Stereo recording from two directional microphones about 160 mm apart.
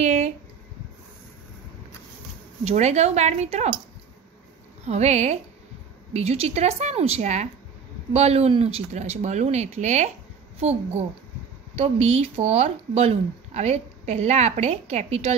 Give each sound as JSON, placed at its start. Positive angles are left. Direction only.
{"t": 0.0, "sound": "a sound", "side_deg": -45}
{"t": 2.6, "sound": "speech", "side_deg": -45}
{"t": 4.8, "sound": "a child's voice", "side_deg": -45}